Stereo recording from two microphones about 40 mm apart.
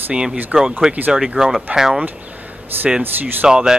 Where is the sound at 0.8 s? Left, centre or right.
Centre.